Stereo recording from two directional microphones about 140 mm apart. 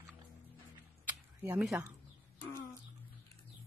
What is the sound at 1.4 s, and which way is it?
Speech, 10° right (ahead or behind).